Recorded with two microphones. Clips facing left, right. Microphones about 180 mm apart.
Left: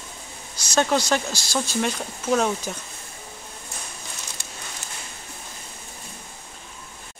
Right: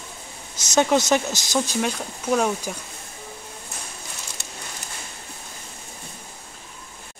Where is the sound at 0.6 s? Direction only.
20° right (ahead or behind).